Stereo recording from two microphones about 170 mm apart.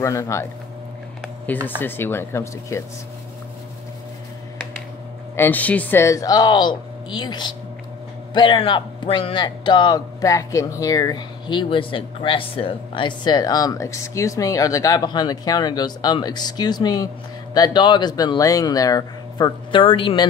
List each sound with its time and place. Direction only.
0.0 s speech: 15° left (ahead or behind)
1.8 s speech: 10° left (ahead or behind)
5.3 s a man's voice: 10° left (ahead or behind); by 20.2 s 30° left (ahead or behind)